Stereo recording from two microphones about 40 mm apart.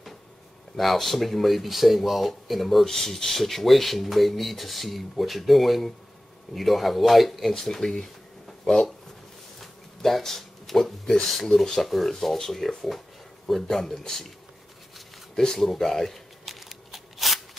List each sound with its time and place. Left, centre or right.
0.7 s speech: centre
2.8 s speech: centre
7.6 s speech: centre
9.6 s a sound: centre
11.2 s speech: centre
15.3 s speech: centre
15.7 s a sound: centre